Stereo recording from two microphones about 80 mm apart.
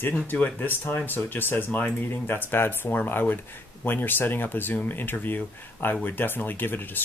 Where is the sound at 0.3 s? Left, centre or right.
Left.